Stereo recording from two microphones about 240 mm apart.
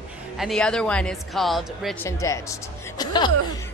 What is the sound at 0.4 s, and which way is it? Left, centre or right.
Speech, centre.